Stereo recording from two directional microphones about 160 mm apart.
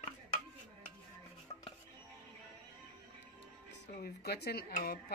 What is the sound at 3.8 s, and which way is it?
Speech, 85° left.